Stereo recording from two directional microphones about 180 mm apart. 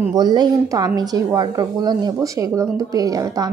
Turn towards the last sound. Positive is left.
turn(degrees=-20)  # may be behind; listen again after turning